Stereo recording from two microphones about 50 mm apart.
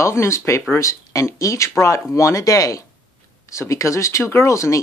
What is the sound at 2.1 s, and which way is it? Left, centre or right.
Speech, left.